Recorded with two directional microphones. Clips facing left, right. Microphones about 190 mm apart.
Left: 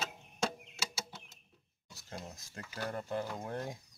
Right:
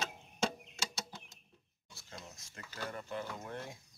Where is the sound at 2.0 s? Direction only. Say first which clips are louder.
Left 5 dB; 35° left (ahead or behind).